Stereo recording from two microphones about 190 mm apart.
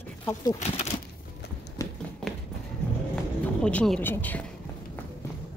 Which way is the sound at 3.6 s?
5° left (ahead or behind).